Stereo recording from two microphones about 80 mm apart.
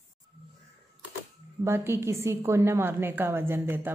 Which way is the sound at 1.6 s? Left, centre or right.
Right.